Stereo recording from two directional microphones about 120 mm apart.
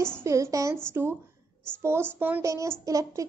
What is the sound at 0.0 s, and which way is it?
A woman's voice, 20° right (ahead or behind).